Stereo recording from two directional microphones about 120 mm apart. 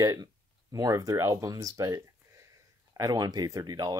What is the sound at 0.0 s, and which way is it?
Speech, 30° right (ahead or behind).